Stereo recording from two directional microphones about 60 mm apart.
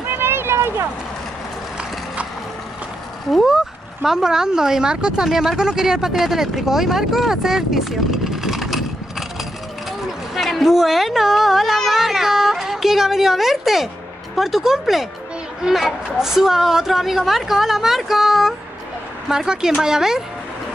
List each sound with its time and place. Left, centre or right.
0.0 s vehicle: right
3.3 s a woman's voice: centre
10.3 s a sound: centre
14.3 s a woman's voice: centre